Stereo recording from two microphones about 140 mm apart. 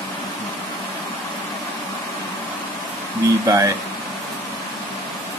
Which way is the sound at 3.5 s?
25° right (ahead or behind).